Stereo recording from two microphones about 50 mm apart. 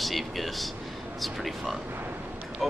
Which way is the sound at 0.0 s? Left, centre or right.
Centre.